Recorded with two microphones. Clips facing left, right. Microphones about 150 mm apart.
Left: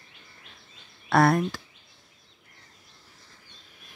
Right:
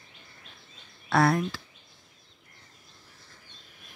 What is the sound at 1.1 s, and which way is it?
Speech, 50° left (ahead or behind).